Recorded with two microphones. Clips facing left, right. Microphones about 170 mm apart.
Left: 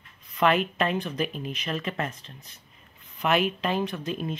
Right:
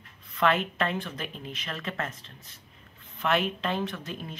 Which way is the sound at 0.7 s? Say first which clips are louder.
Left 4 dB; 15° left (ahead or behind).